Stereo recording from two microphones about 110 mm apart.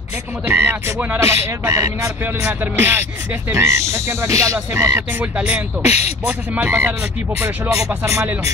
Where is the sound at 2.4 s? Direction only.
15° right (ahead or behind).